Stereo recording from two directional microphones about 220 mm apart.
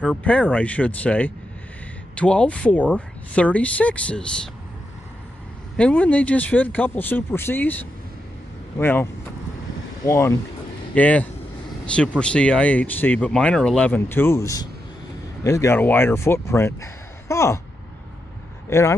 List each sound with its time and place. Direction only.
0.0 s speech: 5° left (ahead or behind)
5.8 s speech: 5° left (ahead or behind)
18.7 s speech: 15° left (ahead or behind)